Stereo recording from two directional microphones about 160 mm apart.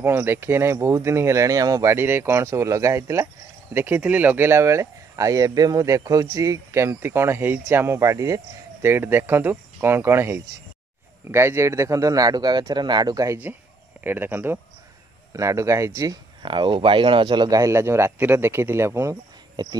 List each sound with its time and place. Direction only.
0.0 s a man's voice: 15° right (ahead or behind)
16.4 s a man's voice: 30° right (ahead or behind)